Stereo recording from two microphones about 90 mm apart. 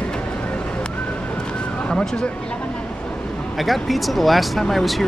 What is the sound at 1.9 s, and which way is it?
Speech, 5° left (ahead or behind).